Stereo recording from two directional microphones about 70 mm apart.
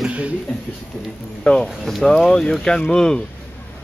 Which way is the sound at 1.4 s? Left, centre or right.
Centre.